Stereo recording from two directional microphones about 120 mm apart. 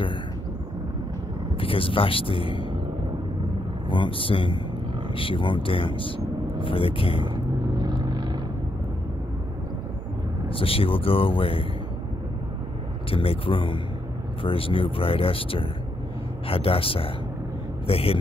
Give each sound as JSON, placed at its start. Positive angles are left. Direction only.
{"t": 1.6, "sound": "speech", "side_deg": 50}
{"t": 3.9, "sound": "speech", "side_deg": 45}
{"t": 7.8, "sound": "vehicle", "side_deg": -35}
{"t": 10.5, "sound": "speech", "side_deg": 50}
{"t": 13.1, "sound": "speech", "side_deg": 50}